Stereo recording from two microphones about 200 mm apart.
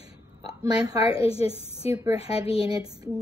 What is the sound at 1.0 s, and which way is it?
A woman's voice, 30° left (ahead or behind).